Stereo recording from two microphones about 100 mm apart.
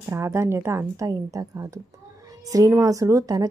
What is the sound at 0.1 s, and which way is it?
A woman's voice, 25° right (ahead or behind).